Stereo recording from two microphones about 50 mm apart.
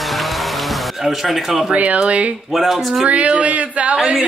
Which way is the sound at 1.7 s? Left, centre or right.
Right.